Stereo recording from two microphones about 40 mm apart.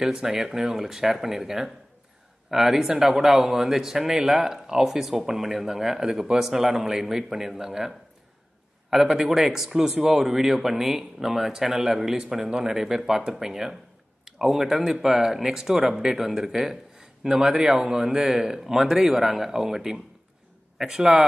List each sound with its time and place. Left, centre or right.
0.0 s speech: centre
8.9 s speech: centre